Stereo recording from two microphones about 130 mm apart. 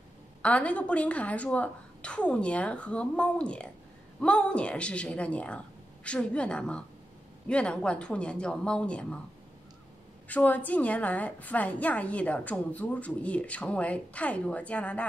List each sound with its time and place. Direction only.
0.4 s a woman's voice: 10° left (ahead or behind)
10.2 s a woman's voice: 10° left (ahead or behind)